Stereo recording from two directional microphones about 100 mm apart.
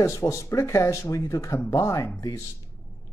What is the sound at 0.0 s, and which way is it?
Speech, 30° left (ahead or behind).